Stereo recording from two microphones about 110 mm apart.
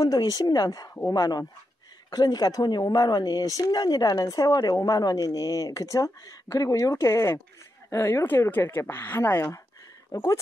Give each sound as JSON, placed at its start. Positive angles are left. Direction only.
{"t": 0.0, "sound": "speech", "side_deg": 35}